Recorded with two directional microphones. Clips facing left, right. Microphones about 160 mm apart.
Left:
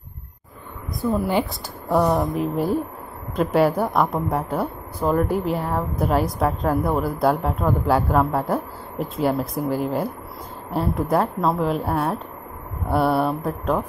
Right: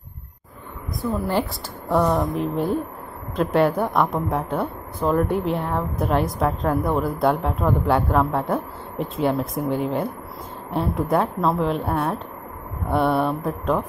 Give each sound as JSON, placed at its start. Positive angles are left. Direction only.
{"t": 1.0, "sound": "a woman's voice", "side_deg": 0}